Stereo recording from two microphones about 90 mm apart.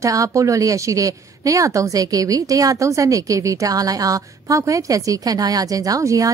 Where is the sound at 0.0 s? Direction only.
40° right (ahead or behind).